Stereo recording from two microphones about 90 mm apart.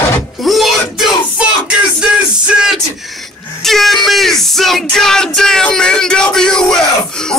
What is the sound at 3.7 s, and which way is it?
Music, centre (ahead or behind).